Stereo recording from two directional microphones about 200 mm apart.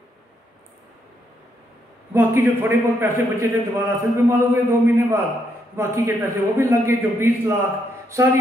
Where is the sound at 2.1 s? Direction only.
10° right (ahead or behind).